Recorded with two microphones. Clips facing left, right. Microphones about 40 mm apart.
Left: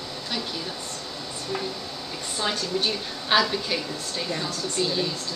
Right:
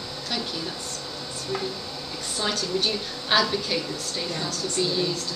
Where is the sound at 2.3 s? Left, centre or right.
Centre.